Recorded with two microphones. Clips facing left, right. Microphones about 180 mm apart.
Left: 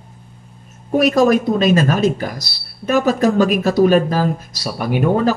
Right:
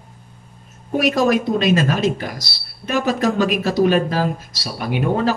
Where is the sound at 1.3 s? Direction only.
45° left (ahead or behind).